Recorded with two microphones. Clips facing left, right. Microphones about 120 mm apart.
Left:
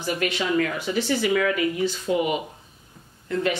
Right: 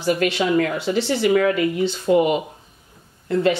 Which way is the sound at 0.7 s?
30° right (ahead or behind).